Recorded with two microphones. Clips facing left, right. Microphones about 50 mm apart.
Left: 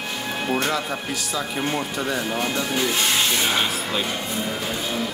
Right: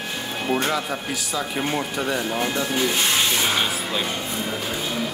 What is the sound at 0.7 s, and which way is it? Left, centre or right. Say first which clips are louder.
Speech: even; centre.